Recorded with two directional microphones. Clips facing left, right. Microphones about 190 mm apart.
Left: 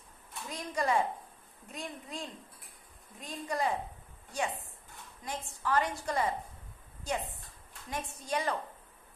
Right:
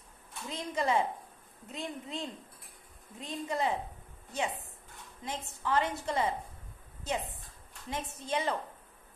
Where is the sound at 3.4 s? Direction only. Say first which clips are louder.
Even; 20° right (ahead or behind).